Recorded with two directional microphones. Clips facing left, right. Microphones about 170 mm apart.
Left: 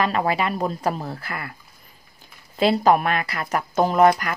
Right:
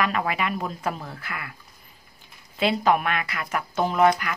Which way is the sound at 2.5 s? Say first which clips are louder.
Left 4 dB; 40° left (ahead or behind).